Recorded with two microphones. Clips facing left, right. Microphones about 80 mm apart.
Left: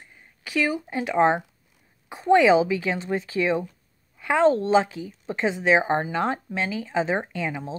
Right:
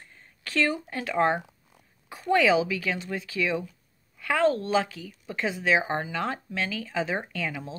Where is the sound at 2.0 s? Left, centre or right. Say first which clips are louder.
Left 5 dB; left.